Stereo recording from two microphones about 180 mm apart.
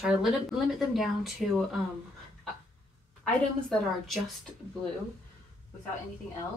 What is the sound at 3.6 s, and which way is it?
Speech, centre (ahead or behind).